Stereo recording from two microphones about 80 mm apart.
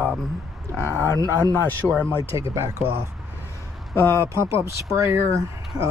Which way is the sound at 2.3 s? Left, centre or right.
Right.